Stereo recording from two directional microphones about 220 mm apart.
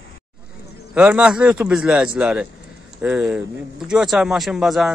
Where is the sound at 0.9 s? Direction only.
5° right (ahead or behind).